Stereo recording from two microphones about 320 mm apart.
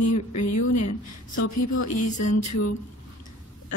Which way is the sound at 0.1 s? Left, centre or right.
Left.